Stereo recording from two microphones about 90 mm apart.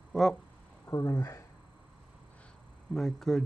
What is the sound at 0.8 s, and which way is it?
Speech, 35° left (ahead or behind).